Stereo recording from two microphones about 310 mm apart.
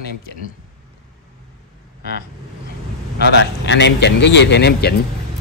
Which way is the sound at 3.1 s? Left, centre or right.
Left.